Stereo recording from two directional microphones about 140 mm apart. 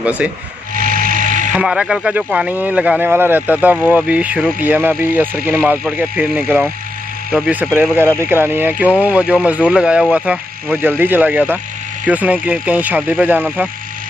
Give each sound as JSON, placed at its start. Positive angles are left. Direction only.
{"t": 0.0, "sound": "speech", "side_deg": -10}
{"t": 0.7, "sound": "a sound", "side_deg": -80}
{"t": 1.5, "sound": "speech", "side_deg": -5}